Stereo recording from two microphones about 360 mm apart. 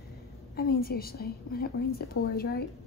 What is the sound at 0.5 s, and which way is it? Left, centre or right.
Speech, left.